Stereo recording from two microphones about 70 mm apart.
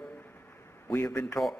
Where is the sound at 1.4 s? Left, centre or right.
Centre.